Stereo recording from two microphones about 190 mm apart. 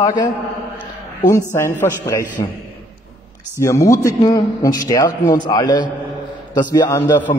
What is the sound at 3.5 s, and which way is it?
A man's voice, 15° left (ahead or behind).